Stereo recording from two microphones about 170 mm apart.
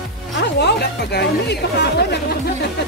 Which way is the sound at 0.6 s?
70° left (ahead or behind).